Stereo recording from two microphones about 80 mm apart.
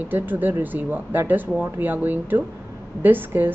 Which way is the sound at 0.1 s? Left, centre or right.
Right.